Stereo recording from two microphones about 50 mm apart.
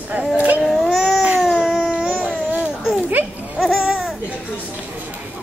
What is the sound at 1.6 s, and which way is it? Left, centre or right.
Babbling, centre.